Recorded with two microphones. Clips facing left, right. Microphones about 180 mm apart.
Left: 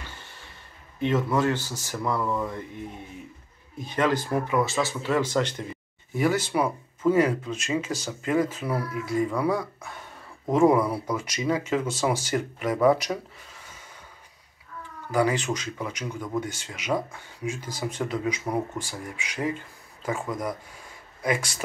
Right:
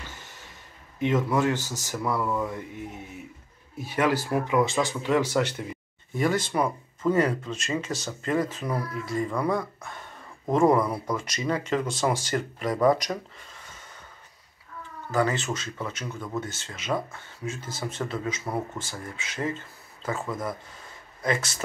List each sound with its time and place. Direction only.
0.0 s a sound: 10° right (ahead or behind)
0.9 s speech: 10° right (ahead or behind)
6.1 s speech: 10° left (ahead or behind)
15.0 s speech: 15° left (ahead or behind)